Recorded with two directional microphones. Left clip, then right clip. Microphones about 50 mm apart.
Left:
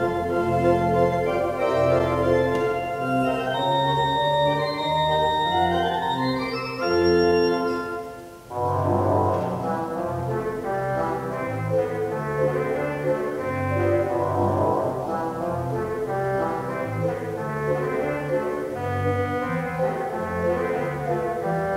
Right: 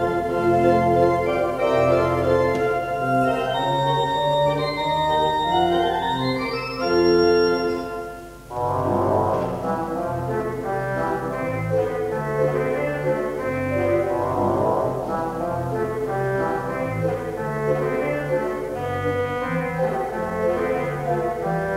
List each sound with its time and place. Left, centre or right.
0.0 s organ: right
8.8 s music: centre
12.4 s music: centre
13.7 s music: right